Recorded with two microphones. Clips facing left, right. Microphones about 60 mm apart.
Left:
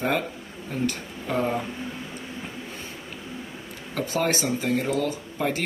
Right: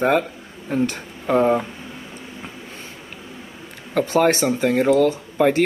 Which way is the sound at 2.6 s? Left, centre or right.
Right.